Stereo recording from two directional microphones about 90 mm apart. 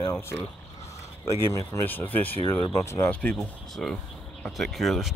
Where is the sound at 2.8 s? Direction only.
30° left (ahead or behind).